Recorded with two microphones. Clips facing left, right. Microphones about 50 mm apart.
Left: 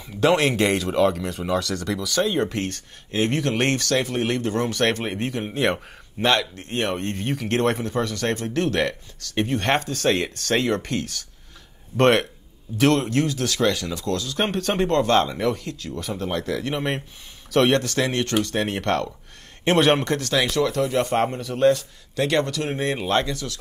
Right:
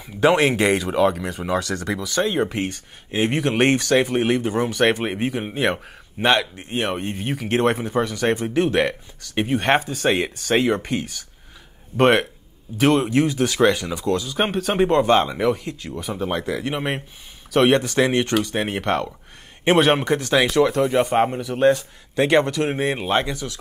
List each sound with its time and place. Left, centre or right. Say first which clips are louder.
0.0 s speech: right 2 dB; centre